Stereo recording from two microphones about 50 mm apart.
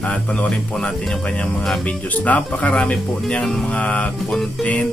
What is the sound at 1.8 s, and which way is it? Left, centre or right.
Speech, left.